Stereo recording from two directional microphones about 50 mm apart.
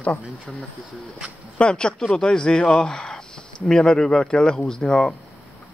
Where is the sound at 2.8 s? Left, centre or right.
Left.